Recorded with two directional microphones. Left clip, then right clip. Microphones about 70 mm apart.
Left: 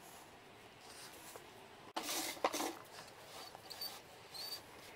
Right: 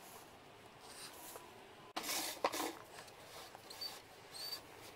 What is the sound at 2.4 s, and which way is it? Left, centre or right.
Dishes, centre.